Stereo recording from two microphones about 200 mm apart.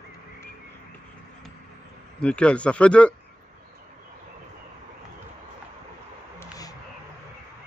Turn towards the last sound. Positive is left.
turn(degrees=20)  # may be behind; listen again after turning